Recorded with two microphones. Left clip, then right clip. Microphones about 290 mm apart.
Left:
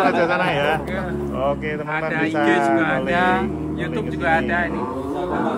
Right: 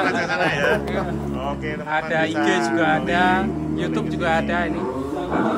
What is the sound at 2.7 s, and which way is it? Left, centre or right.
Speech, centre.